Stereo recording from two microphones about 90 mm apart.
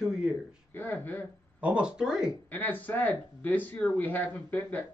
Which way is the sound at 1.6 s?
15° right (ahead or behind).